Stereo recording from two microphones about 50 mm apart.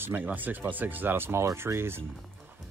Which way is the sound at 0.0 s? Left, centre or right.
Right.